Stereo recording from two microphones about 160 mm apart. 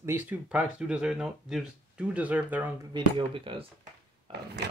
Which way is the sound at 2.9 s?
30° right (ahead or behind).